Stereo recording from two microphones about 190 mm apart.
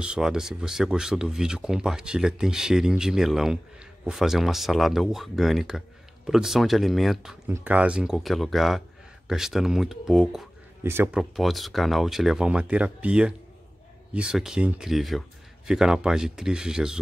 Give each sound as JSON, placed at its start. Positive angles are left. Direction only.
{"t": 0.0, "sound": "speech", "side_deg": -5}
{"t": 7.4, "sound": "speech", "side_deg": -10}
{"t": 11.3, "sound": "speech", "side_deg": 0}